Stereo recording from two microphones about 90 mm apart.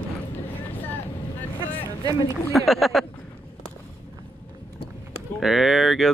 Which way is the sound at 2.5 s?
Centre (ahead or behind).